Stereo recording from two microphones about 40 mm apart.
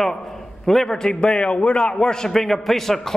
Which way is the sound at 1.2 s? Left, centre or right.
Left.